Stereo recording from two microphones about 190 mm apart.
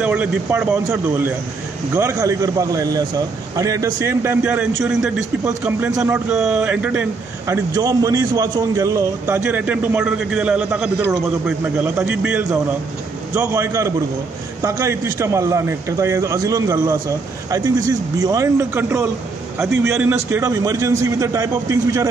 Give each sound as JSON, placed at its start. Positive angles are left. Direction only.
{"t": 0.0, "sound": "a man's voice", "side_deg": -5}